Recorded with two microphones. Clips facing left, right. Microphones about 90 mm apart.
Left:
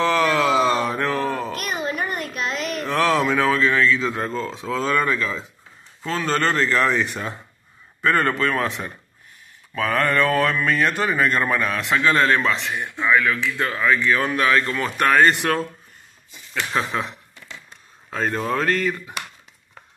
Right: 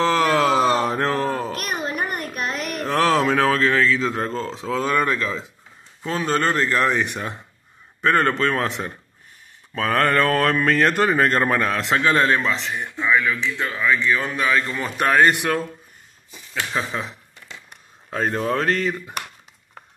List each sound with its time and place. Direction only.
0.0 s mantra: 35° right (ahead or behind)
1.8 s a sound: 50° right (ahead or behind)
2.8 s a sound: 30° right (ahead or behind)
3.5 s speech: 35° right (ahead or behind); by 7.1 s 15° right (ahead or behind)
8.0 s speech: 30° right (ahead or behind)
11.7 s speech: 30° right (ahead or behind)
12.4 s speech: centre (ahead or behind)
16.7 s speech: centre (ahead or behind)
18.1 s speech: 15° right (ahead or behind)